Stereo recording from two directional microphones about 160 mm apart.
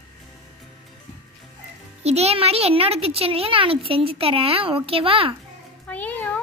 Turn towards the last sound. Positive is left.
turn(degrees=10)  # may be behind; listen again after turning